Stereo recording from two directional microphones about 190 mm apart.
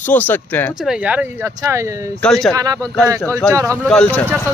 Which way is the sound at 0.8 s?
5° right (ahead or behind).